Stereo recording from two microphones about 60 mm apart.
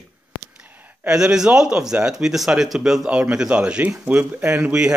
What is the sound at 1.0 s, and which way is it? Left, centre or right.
A man's voice, centre.